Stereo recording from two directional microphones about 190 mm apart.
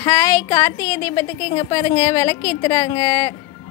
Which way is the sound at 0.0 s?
10° left (ahead or behind).